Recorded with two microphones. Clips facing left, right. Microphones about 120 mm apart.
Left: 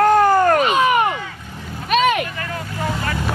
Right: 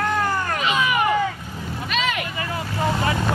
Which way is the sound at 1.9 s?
55° left (ahead or behind).